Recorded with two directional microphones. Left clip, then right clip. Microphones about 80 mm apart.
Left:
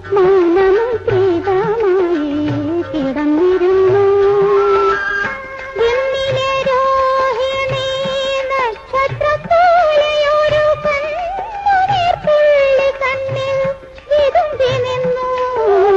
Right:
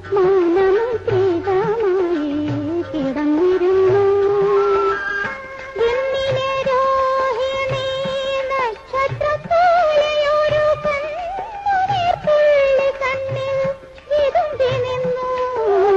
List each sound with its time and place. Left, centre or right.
0.1 s music: right
5.8 s music of bollywood: right
8.3 s music: right
12.4 s a sound: right
14.1 s music: right